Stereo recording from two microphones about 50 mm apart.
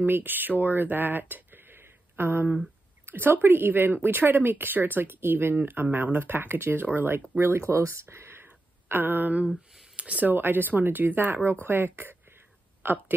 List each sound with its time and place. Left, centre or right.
0.0 s a woman's voice: right
7.2 s speech: right
8.8 s speech: right
9.9 s speech: right
10.3 s a woman's voice: right